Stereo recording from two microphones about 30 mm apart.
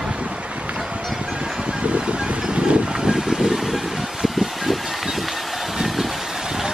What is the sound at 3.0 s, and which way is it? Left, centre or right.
Vehicle, centre.